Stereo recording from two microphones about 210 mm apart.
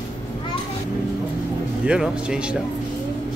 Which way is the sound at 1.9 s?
5° right (ahead or behind).